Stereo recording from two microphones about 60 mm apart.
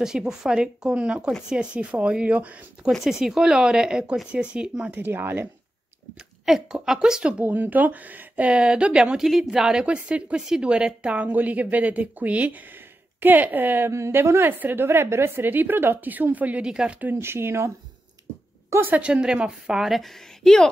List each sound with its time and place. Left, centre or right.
0.0 s speech: centre
3.0 s speech: centre
4.9 s a woman's voice: right
6.4 s speech: centre
7.4 s speech: right
13.8 s speech: right
14.5 s a woman's voice: right
16.6 s speech: centre
17.1 s speech: right
18.8 s a woman's voice: right
19.0 s speech: centre
19.9 s a woman's voice: centre